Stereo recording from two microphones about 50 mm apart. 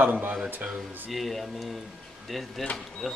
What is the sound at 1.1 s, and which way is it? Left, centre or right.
Speech, centre.